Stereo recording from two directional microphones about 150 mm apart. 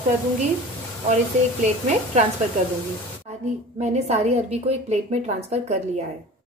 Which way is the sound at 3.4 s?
50° right (ahead or behind).